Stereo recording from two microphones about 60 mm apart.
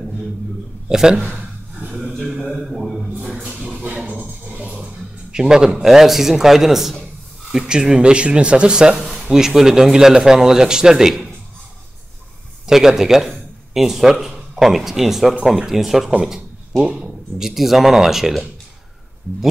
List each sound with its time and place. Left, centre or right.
0.8 s speech: centre
2.1 s a sound: centre
3.8 s a sound: right
4.6 s music: right
5.3 s a man's voice: centre
12.6 s a man's voice: centre